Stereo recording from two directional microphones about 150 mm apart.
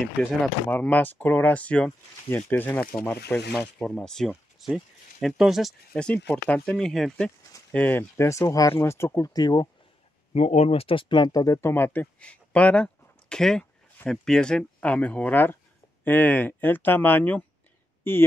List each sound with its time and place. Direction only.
0.2 s speech: 5° right (ahead or behind)
0.7 s speech: 10° left (ahead or behind)
10.3 s speech: 45° left (ahead or behind); by 18.2 s 15° left (ahead or behind)